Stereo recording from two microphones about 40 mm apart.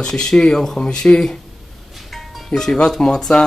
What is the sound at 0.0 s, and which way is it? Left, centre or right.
Speech, centre.